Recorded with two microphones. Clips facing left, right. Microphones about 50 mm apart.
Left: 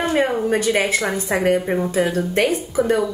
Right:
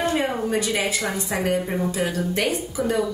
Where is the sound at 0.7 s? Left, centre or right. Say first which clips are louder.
Left 5 dB; left.